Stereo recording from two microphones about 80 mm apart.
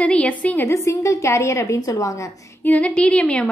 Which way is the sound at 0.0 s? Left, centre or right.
Centre.